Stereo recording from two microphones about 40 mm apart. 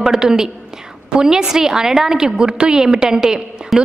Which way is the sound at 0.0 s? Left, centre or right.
Centre.